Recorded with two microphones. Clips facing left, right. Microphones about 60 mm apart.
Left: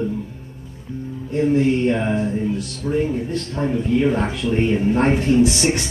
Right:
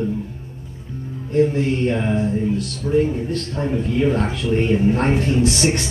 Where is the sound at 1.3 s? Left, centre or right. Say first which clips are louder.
Even; centre.